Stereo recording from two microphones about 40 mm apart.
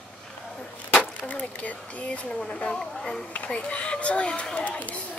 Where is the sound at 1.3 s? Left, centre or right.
Left.